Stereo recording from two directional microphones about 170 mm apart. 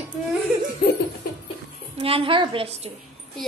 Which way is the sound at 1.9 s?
35° right (ahead or behind).